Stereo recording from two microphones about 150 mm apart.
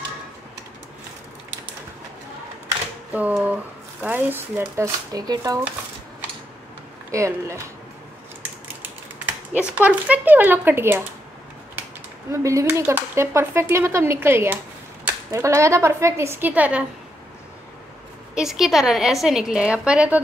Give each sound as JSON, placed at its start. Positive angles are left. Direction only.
{"t": 3.1, "sound": "speech", "side_deg": -10}
{"t": 7.1, "sound": "speech", "side_deg": -20}
{"t": 9.6, "sound": "speech", "side_deg": -10}
{"t": 12.3, "sound": "speech", "side_deg": -20}
{"t": 18.3, "sound": "a woman's voice", "side_deg": -5}